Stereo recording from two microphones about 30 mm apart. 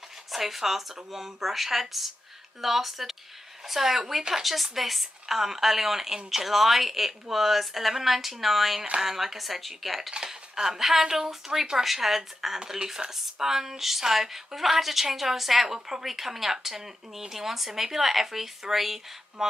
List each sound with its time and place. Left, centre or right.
0.3 s a woman's voice: centre
10.1 s a woman's voice: right